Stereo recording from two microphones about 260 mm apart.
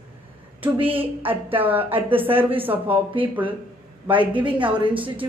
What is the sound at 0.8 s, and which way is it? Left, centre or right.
Speech, centre.